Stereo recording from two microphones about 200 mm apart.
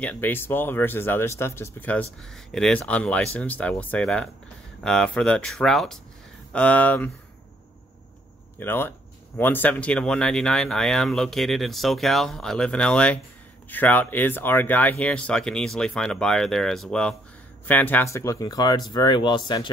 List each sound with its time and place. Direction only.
0.0 s speech: 10° left (ahead or behind)
8.5 s speech: 10° left (ahead or behind)